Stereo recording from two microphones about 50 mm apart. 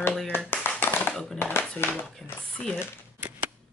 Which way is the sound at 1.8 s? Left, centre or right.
Left.